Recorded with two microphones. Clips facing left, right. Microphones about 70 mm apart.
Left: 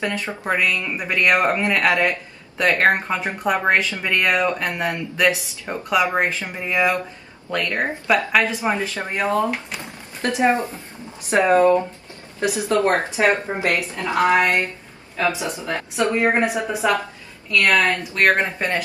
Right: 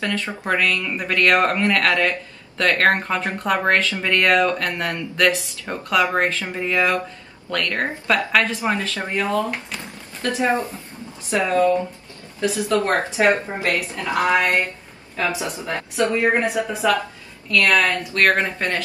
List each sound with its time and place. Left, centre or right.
0.0 s speech: centre
8.6 s speech: left
15.6 s speech: left